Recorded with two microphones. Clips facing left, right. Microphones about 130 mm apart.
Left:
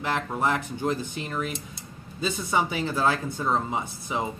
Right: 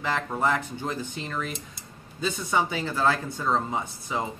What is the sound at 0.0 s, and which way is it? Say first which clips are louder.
Speech: even; 15° left (ahead or behind).